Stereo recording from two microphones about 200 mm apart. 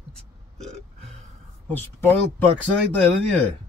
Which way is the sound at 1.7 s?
10° left (ahead or behind).